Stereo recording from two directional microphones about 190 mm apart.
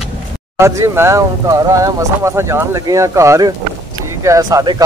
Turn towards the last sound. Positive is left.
turn(degrees=-20)  # may be behind; listen again after turning